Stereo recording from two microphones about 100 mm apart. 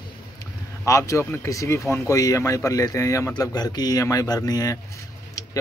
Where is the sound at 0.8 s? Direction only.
30° left (ahead or behind).